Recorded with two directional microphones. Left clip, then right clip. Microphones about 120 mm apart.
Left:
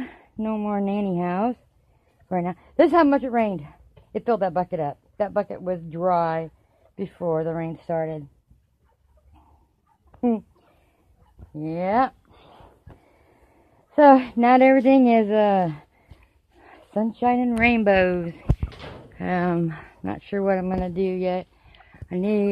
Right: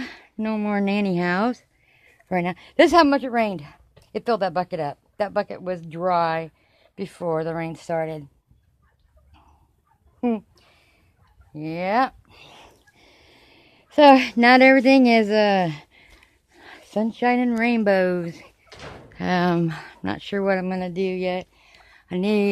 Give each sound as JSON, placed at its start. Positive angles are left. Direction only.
{"t": 0.0, "sound": "a sound", "side_deg": -35}
{"t": 0.5, "sound": "speech", "side_deg": -60}
{"t": 2.7, "sound": "speech", "side_deg": -45}
{"t": 3.0, "sound": "a woman's voice", "side_deg": -20}
{"t": 11.5, "sound": "speech", "side_deg": -10}
{"t": 12.5, "sound": "a sound", "side_deg": -35}
{"t": 13.1, "sound": "a sound", "side_deg": -60}
{"t": 13.9, "sound": "speech", "side_deg": -40}
{"t": 17.6, "sound": "speech", "side_deg": -35}
{"t": 19.0, "sound": "speech", "side_deg": -50}